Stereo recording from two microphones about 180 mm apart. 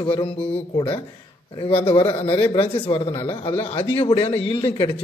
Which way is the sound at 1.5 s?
30° left (ahead or behind).